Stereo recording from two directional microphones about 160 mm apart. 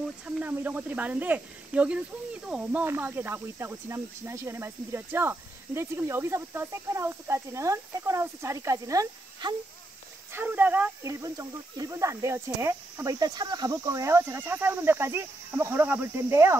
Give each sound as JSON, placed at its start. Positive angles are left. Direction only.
{"t": 0.4, "sound": "speech", "side_deg": -10}
{"t": 10.3, "sound": "speech", "side_deg": -10}